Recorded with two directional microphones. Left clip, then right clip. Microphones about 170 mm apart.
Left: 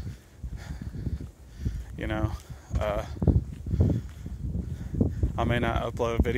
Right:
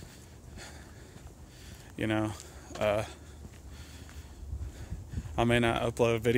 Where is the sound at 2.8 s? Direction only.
25° right (ahead or behind).